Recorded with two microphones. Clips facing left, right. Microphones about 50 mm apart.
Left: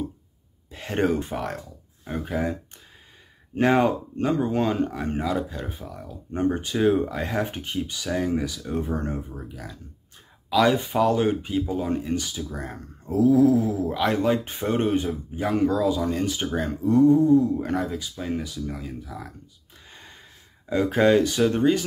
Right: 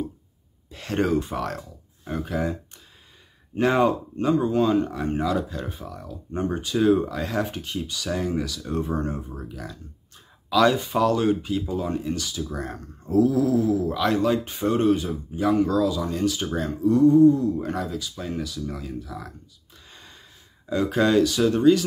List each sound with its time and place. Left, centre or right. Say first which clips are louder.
0.9 s speech: even; left
1.3 s speech: right 1 dB; centre
3.5 s speech: even; left
5.1 s speech: right 2 dB; centre
6.3 s speech: left 1 dB; left
8.0 s speech: left 1 dB; centre
12.4 s speech: right 2 dB; centre; by 18.6 s left
18.7 s speech: right 1 dB; centre
20.6 s speech: left 2 dB; left